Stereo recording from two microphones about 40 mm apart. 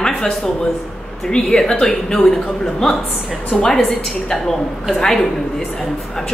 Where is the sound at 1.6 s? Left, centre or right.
Centre.